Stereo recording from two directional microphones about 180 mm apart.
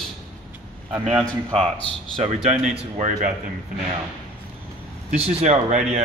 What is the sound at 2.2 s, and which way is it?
Speech, 40° right (ahead or behind).